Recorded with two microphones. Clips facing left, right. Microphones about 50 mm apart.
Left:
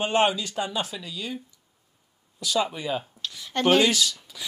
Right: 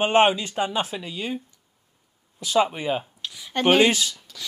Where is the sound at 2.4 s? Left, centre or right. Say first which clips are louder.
Right 4 dB; right.